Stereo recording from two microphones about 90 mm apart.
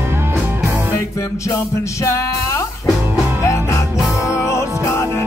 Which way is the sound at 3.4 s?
30° left (ahead or behind).